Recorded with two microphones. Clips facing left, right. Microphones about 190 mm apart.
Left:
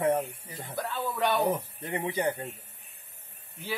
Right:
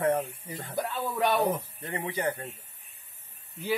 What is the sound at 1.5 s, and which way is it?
Speech, 15° left (ahead or behind).